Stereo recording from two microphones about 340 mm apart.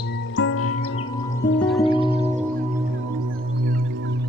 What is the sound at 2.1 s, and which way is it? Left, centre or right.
Music, centre.